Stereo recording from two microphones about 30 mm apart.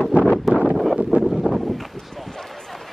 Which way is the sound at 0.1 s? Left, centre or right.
Right.